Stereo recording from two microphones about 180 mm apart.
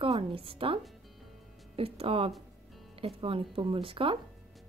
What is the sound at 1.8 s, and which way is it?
A woman's voice, 30° right (ahead or behind).